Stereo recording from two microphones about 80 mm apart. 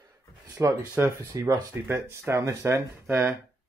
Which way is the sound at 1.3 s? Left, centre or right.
Right.